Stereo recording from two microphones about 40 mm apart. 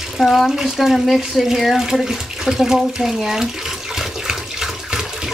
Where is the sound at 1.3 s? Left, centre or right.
Centre.